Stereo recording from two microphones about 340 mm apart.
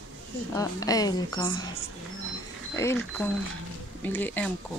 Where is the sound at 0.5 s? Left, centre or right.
Centre.